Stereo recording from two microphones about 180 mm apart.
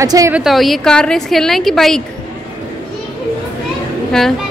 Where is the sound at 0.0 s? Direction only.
20° right (ahead or behind).